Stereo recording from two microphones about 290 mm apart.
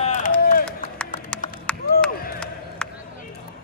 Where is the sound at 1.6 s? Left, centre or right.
Centre.